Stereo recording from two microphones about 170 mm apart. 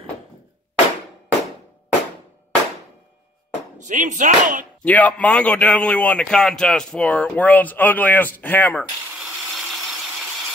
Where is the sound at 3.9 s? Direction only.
50° right (ahead or behind).